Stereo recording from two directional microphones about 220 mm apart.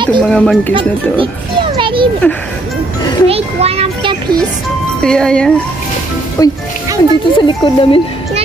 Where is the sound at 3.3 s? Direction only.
25° right (ahead or behind).